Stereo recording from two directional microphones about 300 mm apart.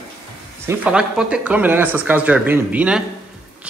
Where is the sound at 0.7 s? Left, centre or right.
Centre.